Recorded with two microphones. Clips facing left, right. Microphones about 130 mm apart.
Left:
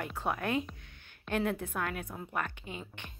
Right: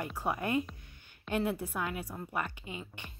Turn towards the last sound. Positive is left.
turn(degrees=-5)  # may be behind; listen again after turning